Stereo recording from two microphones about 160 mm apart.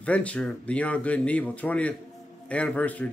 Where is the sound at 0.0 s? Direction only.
10° left (ahead or behind).